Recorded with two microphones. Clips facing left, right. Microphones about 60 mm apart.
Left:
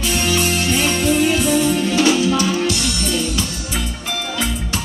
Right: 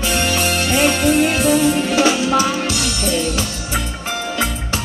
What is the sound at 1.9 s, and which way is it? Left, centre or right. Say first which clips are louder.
Music: even; right.